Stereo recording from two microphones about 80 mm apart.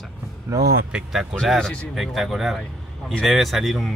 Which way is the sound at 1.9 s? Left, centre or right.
Centre.